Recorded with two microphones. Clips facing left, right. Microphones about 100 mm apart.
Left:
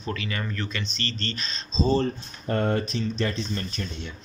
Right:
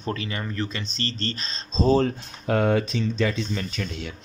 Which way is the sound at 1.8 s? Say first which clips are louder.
Right 3 dB; 90° right.